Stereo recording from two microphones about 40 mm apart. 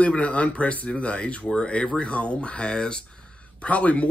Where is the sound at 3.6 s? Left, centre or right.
Left.